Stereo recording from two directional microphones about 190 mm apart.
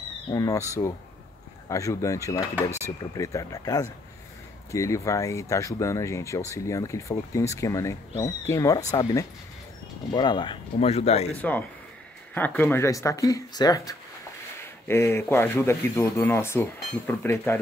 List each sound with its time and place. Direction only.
0.3 s speech: 20° left (ahead or behind)
10.1 s speech: 25° left (ahead or behind)
11.3 s speech: 10° left (ahead or behind)